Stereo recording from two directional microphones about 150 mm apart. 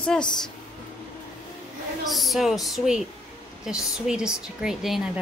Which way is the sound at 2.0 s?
Centre (ahead or behind).